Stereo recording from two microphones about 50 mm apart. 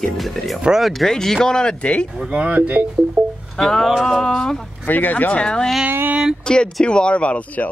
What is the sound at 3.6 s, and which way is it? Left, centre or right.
Speech, centre.